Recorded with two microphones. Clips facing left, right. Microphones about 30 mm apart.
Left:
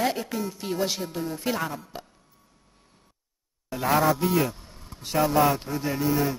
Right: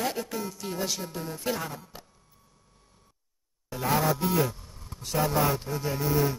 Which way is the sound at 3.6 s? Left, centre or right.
Left.